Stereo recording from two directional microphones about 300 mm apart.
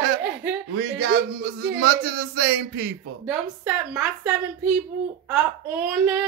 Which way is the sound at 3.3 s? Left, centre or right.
Centre.